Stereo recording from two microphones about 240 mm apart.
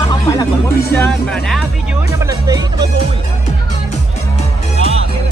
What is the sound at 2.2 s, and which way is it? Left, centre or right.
Speech, centre.